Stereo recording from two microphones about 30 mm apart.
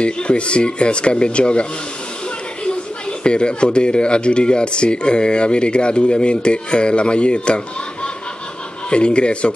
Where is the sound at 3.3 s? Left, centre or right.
Left.